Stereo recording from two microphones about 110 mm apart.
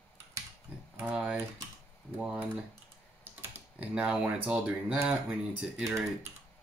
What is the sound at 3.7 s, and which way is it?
Speech, 15° right (ahead or behind).